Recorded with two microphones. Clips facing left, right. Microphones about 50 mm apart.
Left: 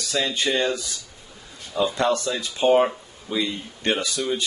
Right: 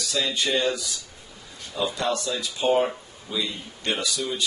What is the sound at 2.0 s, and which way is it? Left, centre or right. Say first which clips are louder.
Speech: left 4 dB; left.